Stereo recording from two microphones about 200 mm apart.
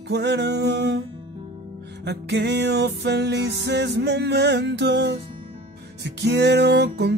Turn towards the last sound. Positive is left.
turn(degrees=-60)  # may be behind; listen again after turning